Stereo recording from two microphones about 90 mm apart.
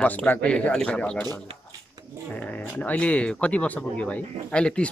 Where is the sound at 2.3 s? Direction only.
15° left (ahead or behind).